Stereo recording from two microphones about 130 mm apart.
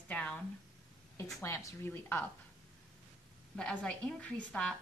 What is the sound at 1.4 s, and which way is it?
Speech, 25° left (ahead or behind).